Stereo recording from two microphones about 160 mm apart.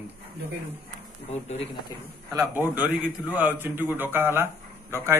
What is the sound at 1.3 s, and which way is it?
Speech, 45° left (ahead or behind).